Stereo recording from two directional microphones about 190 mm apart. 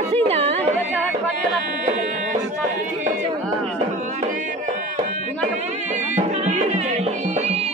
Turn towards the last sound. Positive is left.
turn(degrees=-35)  # may be behind; listen again after turning